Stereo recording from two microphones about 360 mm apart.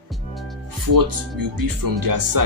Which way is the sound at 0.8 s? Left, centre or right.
Right.